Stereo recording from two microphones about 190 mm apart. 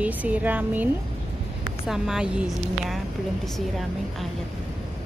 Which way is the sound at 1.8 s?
Centre (ahead or behind).